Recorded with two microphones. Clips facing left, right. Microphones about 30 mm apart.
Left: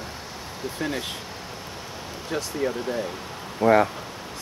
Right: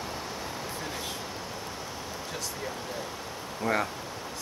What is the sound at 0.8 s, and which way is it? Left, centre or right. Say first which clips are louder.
Speech: left 7 dB; left.